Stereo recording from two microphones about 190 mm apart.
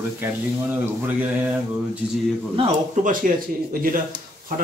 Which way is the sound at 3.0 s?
50° right (ahead or behind).